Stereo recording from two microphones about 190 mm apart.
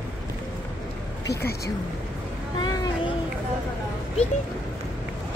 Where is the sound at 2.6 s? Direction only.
20° left (ahead or behind).